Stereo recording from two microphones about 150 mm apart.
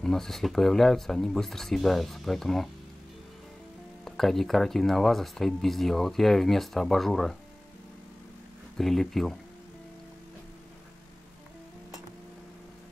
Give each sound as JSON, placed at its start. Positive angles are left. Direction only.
{"t": 0.0, "sound": "speech", "side_deg": 5}
{"t": 4.0, "sound": "speech", "side_deg": 0}
{"t": 8.7, "sound": "speech", "side_deg": 0}